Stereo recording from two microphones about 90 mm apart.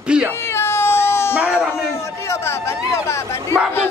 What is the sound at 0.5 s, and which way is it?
Baby cry, 25° left (ahead or behind).